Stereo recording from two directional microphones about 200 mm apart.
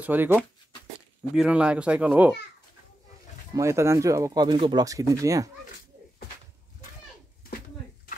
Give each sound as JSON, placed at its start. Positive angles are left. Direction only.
{"t": 0.0, "sound": "speech", "side_deg": -10}
{"t": 3.5, "sound": "speech", "side_deg": -15}